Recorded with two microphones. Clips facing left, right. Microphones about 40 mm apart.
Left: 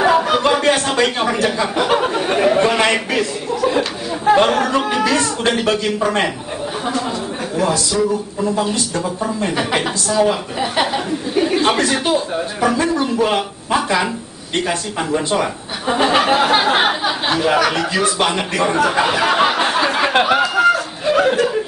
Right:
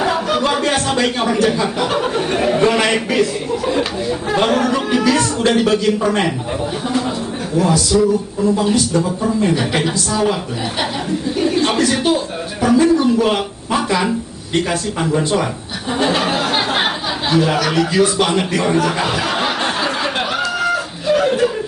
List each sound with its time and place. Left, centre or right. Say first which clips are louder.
0.0 s a sound: left 3 dB; centre
4.3 s chatter: left 3 dB; centre
5.5 s a man's voice: right 3 dB; centre
7.5 s a man's voice: right 3 dB; centre
11.4 s chuckle: right 1 dB; centre
12.6 s speech: right 5 dB; centre
18.8 s a sound: left 2 dB; centre
20.0 s a sound: left 5 dB; left
20.7 s chicken: even; centre